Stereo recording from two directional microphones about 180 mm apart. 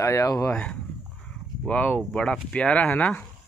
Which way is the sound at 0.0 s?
15° left (ahead or behind).